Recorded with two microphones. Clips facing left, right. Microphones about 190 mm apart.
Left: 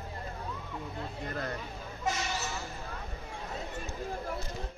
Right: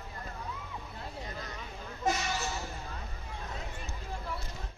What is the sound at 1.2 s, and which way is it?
Speech, 60° left (ahead or behind).